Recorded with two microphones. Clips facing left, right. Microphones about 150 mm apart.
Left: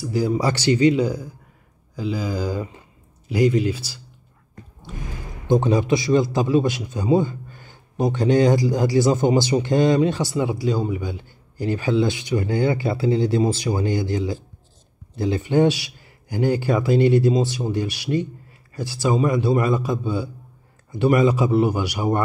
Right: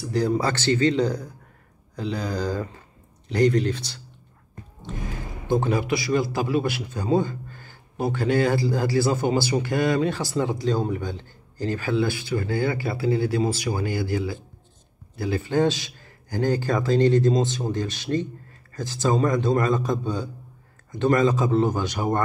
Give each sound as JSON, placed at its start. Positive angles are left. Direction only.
{"t": 0.0, "sound": "speech", "side_deg": 5}
{"t": 5.5, "sound": "a man's voice", "side_deg": 20}